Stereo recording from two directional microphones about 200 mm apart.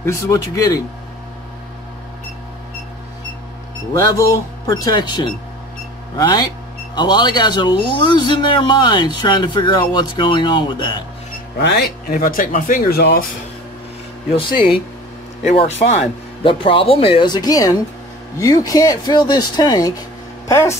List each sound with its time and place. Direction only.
0.0 s speech: 15° left (ahead or behind)
4.0 s speech: 15° left (ahead or behind)
11.5 s speech: 55° left (ahead or behind)
15.4 s speech: 30° left (ahead or behind); by 20.7 s 15° left (ahead or behind)